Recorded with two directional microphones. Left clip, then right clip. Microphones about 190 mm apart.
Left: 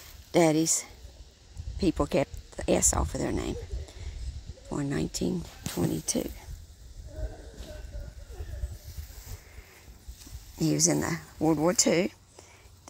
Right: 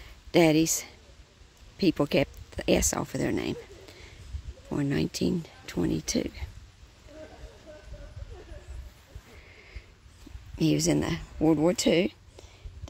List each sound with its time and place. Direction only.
0.3 s speech: 20° right (ahead or behind)
4.6 s speech: 25° right (ahead or behind)
10.7 s speech: 30° right (ahead or behind)
11.4 s speech: 20° right (ahead or behind)
11.7 s speech: 30° right (ahead or behind)